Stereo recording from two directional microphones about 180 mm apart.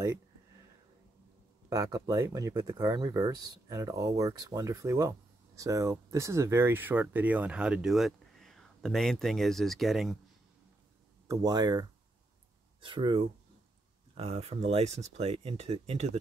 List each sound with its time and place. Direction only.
1.7 s speech: 20° right (ahead or behind); by 10.1 s centre (ahead or behind)
11.2 s speech: 20° right (ahead or behind)